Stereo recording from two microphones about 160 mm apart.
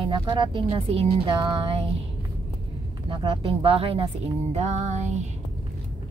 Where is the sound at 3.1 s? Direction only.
30° right (ahead or behind).